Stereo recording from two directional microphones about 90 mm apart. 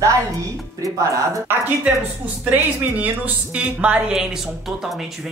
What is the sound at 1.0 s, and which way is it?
Speech, 35° right (ahead or behind).